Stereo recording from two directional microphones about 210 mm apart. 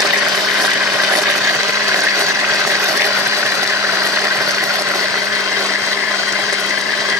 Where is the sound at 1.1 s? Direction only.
15° right (ahead or behind).